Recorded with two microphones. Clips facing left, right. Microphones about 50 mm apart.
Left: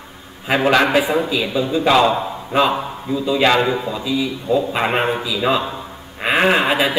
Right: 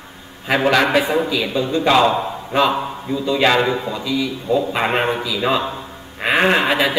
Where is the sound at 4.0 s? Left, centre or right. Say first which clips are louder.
Left 1 dB; left.